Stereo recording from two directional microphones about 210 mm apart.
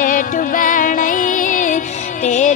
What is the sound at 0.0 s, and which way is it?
Music, 40° left (ahead or behind).